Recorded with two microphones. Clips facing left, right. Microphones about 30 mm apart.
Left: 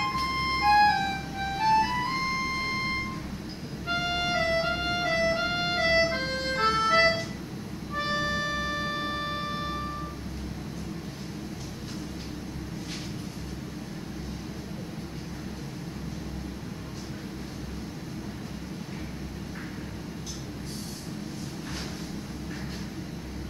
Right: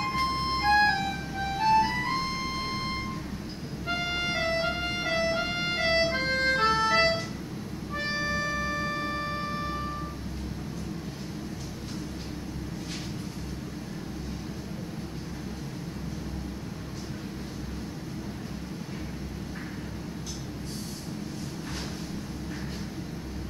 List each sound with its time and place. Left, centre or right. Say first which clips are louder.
0.1 s music: even; centre
8.2 s music: even; centre